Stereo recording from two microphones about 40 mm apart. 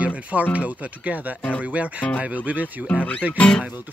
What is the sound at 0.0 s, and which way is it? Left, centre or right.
Speech, right.